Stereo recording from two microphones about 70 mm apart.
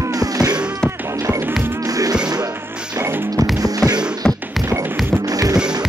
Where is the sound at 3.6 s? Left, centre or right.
Right.